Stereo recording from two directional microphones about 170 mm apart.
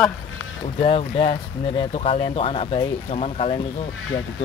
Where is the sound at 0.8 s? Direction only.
35° left (ahead or behind).